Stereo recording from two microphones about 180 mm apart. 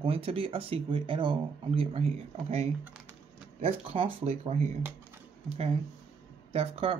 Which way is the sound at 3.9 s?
35° right (ahead or behind).